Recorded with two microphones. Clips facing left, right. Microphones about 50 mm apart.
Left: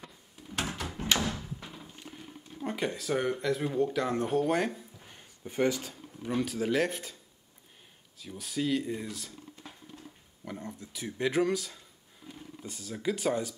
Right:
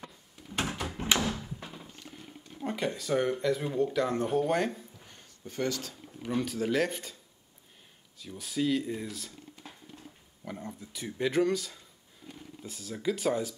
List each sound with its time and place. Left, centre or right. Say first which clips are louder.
0.6 s a sound: right 1 dB; centre
1.2 s door: right 1 dB; centre
2.6 s speech: even; centre
8.2 s speech: right 2 dB; centre